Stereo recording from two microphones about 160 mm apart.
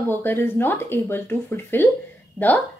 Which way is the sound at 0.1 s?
15° left (ahead or behind).